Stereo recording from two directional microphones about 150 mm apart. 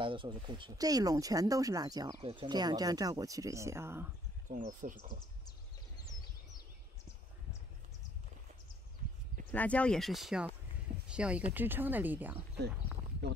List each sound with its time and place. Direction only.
0.0 s speech: 35° right (ahead or behind)
2.1 s speech: 40° right (ahead or behind); by 4.1 s 15° right (ahead or behind)
4.5 s speech: 60° right (ahead or behind)
9.5 s speech: 10° left (ahead or behind); by 12.4 s 10° right (ahead or behind)
13.2 s speech: 90° right